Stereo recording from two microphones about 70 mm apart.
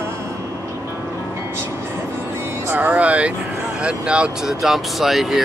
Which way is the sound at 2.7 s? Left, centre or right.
Right.